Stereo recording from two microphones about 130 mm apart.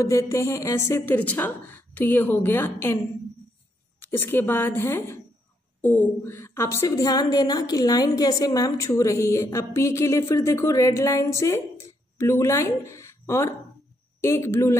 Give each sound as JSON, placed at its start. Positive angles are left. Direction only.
{"t": 0.0, "sound": "a woman's voice", "side_deg": 25}
{"t": 4.0, "sound": "a woman's voice", "side_deg": 15}